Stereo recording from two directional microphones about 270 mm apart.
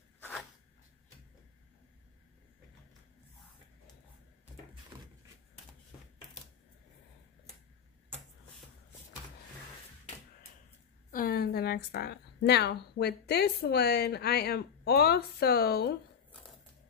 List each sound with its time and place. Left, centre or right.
11.1 s a woman's voice: left